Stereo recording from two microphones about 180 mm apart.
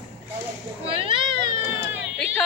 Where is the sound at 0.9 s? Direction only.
30° right (ahead or behind).